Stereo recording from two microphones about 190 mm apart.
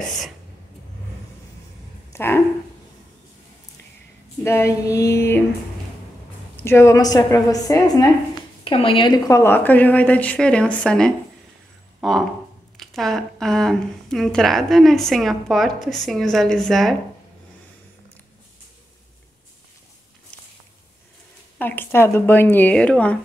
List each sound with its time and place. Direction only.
2.1 s speech: 10° left (ahead or behind)
4.4 s a woman's voice: 15° left (ahead or behind)
6.5 s a woman's voice: 15° left (ahead or behind)
21.5 s a woman's voice: 10° left (ahead or behind)